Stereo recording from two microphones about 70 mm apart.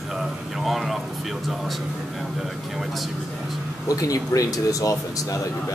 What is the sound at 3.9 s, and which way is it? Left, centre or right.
A man's voice, left.